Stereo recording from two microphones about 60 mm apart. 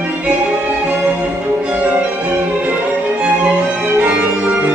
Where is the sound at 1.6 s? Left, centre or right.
Centre.